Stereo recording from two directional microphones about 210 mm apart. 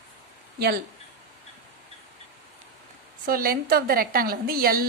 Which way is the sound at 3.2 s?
45° right (ahead or behind).